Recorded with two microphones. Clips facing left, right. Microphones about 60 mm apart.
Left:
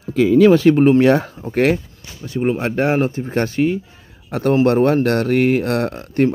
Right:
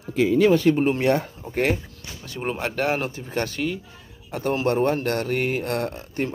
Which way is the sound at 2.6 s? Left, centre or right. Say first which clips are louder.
Left 4 dB; left.